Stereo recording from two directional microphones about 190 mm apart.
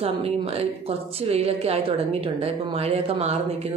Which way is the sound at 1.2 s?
30° right (ahead or behind).